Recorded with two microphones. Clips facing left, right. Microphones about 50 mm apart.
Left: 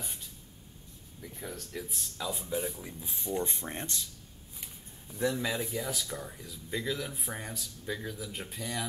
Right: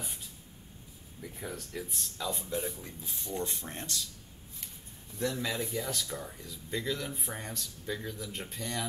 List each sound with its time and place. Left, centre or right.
0.0 s a sound: centre
1.2 s speech: centre
3.4 s speech: left
5.1 s speech: centre